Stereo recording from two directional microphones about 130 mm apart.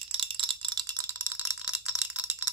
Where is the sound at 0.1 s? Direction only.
40° right (ahead or behind).